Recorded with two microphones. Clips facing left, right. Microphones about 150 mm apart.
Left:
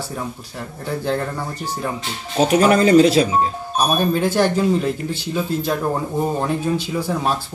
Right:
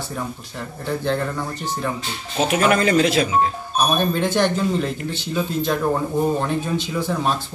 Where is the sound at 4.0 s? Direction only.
5° left (ahead or behind).